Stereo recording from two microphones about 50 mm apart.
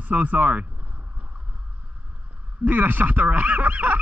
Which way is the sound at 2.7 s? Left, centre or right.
Right.